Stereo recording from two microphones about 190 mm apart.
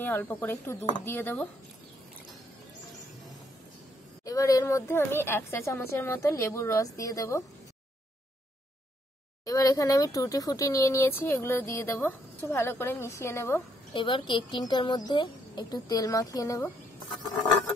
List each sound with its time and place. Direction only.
0.0 s speech: 10° left (ahead or behind)
4.2 s speech: 20° left (ahead or behind)
9.4 s speech: 20° left (ahead or behind)
13.9 s a woman's voice: 25° left (ahead or behind)